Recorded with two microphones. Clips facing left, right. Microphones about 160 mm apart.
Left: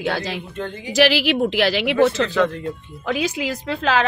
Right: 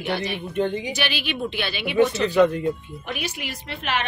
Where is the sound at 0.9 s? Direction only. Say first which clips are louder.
Left 11 dB; 90° left.